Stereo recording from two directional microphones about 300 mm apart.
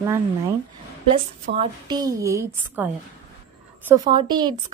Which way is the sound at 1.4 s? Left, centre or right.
Centre.